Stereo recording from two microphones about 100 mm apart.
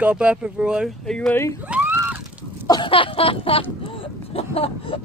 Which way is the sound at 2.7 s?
55° left (ahead or behind).